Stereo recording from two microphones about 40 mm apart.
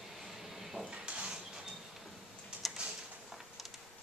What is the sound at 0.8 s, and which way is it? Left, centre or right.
Dishes, right.